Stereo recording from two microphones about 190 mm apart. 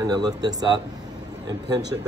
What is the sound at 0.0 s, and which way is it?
Speech, 20° right (ahead or behind).